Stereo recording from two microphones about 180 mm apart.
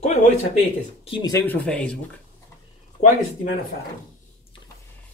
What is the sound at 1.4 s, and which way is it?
Speech, 10° left (ahead or behind).